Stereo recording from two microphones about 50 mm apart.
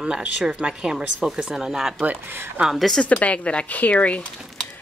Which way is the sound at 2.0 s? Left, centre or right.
Right.